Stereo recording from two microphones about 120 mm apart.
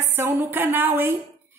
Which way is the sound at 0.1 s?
20° right (ahead or behind).